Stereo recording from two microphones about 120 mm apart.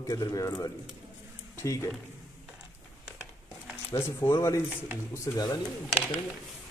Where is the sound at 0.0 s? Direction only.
30° left (ahead or behind).